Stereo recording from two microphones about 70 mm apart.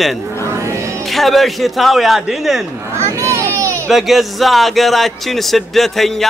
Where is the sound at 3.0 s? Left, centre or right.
Right.